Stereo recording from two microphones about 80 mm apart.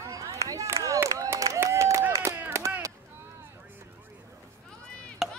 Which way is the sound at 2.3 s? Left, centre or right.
Right.